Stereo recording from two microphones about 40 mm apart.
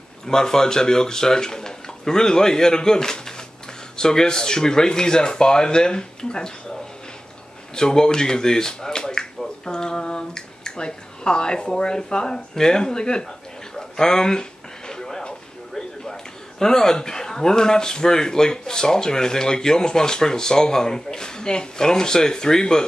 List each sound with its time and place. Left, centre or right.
0.3 s speech: centre